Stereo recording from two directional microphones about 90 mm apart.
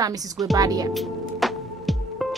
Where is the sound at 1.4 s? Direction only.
Centre (ahead or behind).